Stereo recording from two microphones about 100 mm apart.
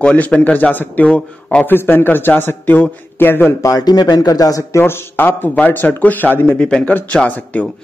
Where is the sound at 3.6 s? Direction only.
35° left (ahead or behind).